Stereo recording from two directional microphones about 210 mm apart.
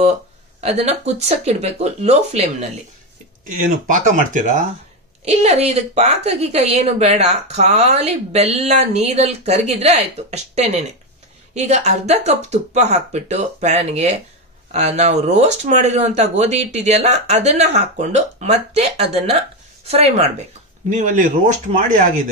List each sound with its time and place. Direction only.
0.6 s a woman's voice: 30° right (ahead or behind)